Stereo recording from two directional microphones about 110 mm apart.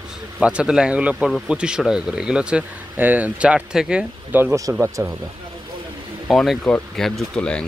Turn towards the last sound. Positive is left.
turn(degrees=10)  # may be behind; listen again after turning